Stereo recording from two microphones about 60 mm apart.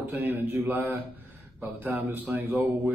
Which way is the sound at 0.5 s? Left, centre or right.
Right.